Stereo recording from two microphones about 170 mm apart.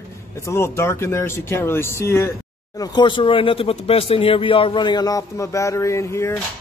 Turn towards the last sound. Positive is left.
turn(degrees=15)  # may be behind; listen again after turning